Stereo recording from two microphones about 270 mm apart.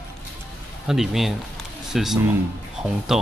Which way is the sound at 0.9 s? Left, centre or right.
Centre.